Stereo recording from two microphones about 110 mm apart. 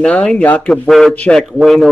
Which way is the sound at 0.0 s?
10° left (ahead or behind).